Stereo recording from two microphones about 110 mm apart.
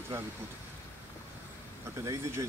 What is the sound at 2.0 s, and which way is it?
Speech, 25° right (ahead or behind).